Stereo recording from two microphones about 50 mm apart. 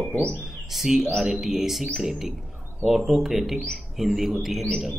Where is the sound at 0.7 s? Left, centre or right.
Centre.